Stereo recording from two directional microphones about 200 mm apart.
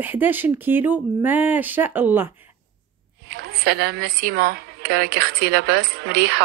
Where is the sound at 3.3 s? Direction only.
50° right (ahead or behind).